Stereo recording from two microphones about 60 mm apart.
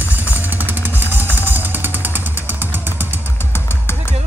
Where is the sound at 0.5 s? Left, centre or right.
Right.